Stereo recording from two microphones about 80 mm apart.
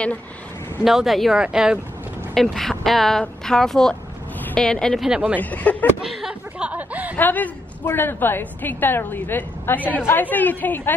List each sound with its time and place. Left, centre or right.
0.8 s speech: centre
2.3 s speech: centre
5.0 s speech: centre
5.4 s a woman's voice: centre
6.0 s a sound: centre
6.7 s a sound: centre
7.2 s a woman's voice: left